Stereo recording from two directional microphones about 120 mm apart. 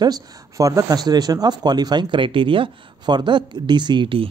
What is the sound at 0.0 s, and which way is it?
Speech, 30° right (ahead or behind).